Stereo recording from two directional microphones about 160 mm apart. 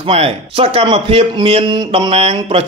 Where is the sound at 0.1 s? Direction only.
40° right (ahead or behind).